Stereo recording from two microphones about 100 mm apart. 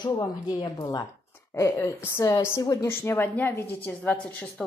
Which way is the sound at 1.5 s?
30° left (ahead or behind).